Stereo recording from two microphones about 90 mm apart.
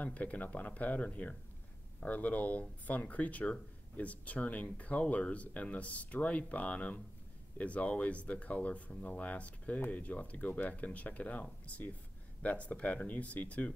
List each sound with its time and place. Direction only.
0.0 s speech: 15° left (ahead or behind)